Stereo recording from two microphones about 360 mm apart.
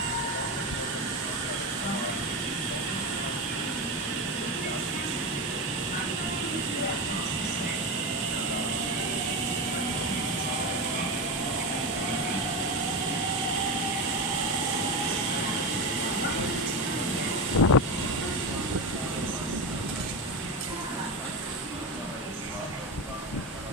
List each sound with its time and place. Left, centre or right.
17.6 s vehicle: left